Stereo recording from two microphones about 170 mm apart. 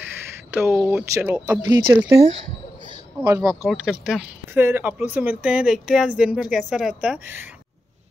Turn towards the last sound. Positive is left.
turn(degrees=-10)  # may be behind; listen again after turning